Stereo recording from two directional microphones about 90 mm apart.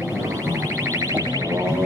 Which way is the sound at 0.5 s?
35° right (ahead or behind).